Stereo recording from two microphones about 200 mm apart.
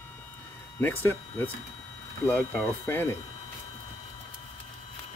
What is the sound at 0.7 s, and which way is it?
Speech, 10° left (ahead or behind).